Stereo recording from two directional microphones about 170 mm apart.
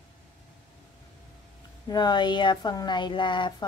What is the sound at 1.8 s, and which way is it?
A woman's voice, 25° left (ahead or behind).